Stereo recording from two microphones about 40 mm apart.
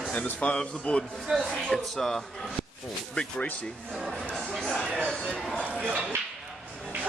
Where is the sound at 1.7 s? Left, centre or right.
Centre.